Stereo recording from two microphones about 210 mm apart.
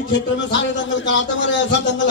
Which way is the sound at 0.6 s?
60° left (ahead or behind).